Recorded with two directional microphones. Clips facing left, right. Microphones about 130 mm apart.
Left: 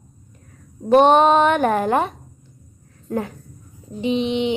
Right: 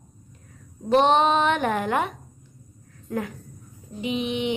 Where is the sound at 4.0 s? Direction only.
30° left (ahead or behind).